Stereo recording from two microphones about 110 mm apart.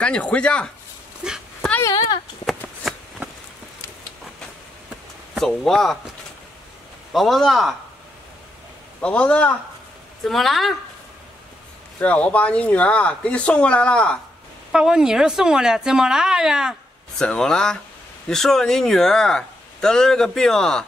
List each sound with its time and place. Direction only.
0.0 s speech: 10° left (ahead or behind)
1.2 s speech: 10° right (ahead or behind)
2.8 s a sound: centre (ahead or behind)
5.6 s speech: 5° left (ahead or behind)
7.1 s speech: centre (ahead or behind)
9.0 s speech: 10° left (ahead or behind)
10.2 s speech: centre (ahead or behind)
12.0 s speech: 10° left (ahead or behind)
14.7 s speech: 5° right (ahead or behind)
17.2 s speech: 5° left (ahead or behind)